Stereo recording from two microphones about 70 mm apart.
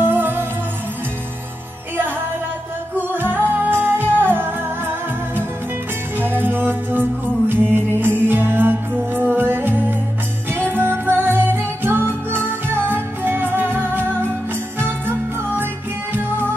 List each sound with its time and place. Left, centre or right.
0.0 s music: right
3.1 s music: right